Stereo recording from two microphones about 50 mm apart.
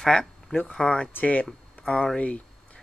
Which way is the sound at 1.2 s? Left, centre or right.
Left.